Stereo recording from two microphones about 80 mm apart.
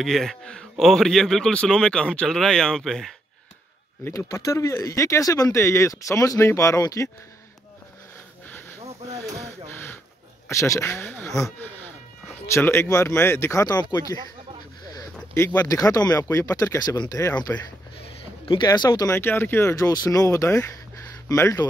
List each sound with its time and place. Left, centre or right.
0.0 s speech: centre
4.1 s speech: left
8.5 s a sound: left
10.5 s speech: left
11.2 s speech: left
12.6 s speech: left
15.3 s speech: left
15.6 s speech: left
17.5 s speech: left
19.0 s speech: left
19.7 s speech: left